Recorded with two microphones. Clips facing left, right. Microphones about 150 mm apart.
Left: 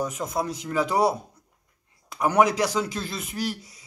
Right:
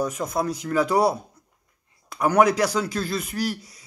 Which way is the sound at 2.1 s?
20° left (ahead or behind).